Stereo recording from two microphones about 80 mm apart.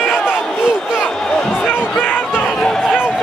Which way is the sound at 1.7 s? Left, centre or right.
Left.